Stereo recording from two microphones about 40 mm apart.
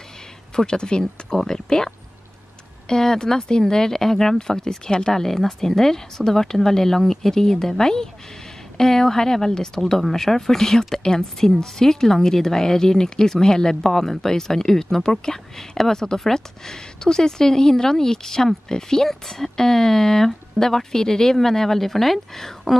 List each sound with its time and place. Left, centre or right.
0.6 s speech: left
1.0 s speech: centre